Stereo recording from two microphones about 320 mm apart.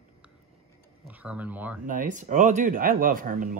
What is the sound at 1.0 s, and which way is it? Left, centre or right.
Speech, centre.